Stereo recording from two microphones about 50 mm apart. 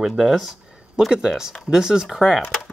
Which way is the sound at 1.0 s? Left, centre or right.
Centre.